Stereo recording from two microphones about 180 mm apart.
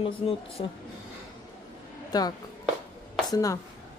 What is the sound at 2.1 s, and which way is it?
Speech, 20° left (ahead or behind).